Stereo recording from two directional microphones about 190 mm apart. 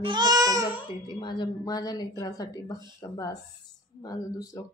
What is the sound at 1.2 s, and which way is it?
Speech, 20° left (ahead or behind).